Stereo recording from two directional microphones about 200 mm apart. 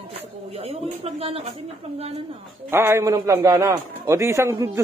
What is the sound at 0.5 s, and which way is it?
Speech, 30° right (ahead or behind).